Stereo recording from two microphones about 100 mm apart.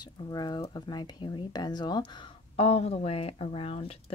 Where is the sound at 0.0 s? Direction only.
45° left (ahead or behind).